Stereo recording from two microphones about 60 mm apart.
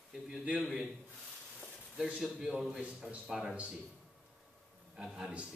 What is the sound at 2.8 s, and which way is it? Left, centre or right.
Speech, right.